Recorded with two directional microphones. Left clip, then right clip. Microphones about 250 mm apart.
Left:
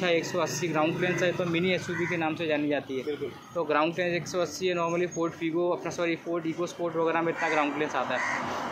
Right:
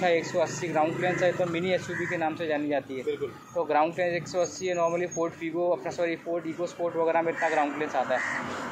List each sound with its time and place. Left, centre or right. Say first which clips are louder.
0.0 s speech: right 2 dB; left